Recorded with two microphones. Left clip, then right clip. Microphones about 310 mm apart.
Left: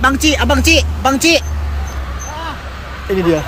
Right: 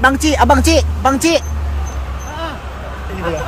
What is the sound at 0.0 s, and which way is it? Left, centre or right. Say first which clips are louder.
A man's voice: right 1 dB; centre.